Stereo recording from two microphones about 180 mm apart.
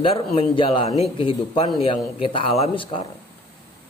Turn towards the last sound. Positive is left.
turn(degrees=30)  # may be behind; listen again after turning